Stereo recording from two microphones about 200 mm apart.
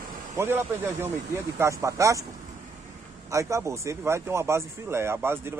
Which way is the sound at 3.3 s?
15° right (ahead or behind).